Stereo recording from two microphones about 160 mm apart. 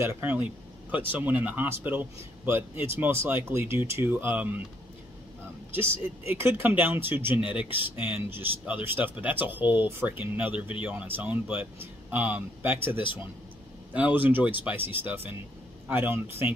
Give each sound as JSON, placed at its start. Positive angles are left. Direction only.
{"t": 0.0, "sound": "speech", "side_deg": -10}
{"t": 5.8, "sound": "speech", "side_deg": -15}